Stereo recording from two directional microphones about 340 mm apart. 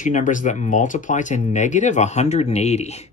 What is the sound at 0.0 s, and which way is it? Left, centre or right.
Speech, left.